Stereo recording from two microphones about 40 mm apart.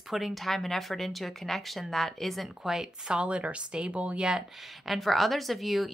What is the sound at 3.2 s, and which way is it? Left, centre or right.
Speech, right.